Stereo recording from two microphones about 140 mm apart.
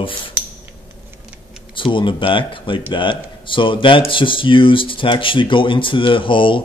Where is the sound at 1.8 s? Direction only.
35° left (ahead or behind).